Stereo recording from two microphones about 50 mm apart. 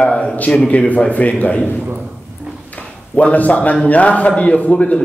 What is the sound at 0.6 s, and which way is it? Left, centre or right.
Speech, centre.